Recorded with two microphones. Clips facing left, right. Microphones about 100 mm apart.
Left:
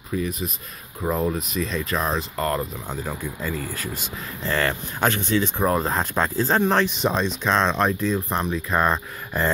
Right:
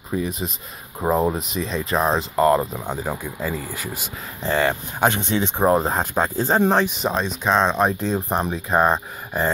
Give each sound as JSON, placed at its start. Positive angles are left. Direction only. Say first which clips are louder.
{"t": 0.1, "sound": "speech", "louder": "right 1 dB", "side_deg": -25}
{"t": 8.0, "sound": "speech", "louder": "right 1 dB", "side_deg": -25}